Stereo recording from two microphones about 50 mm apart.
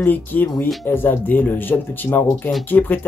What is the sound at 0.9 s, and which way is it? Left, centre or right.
Speech, left.